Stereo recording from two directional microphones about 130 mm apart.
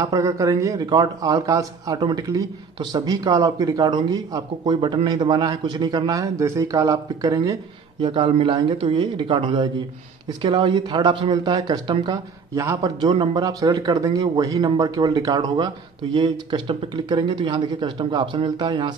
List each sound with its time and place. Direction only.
0.0 s a man's voice: 25° right (ahead or behind)
8.0 s speech: 45° right (ahead or behind)
10.7 s speech: 35° right (ahead or behind)
12.5 s a man's voice: 25° right (ahead or behind)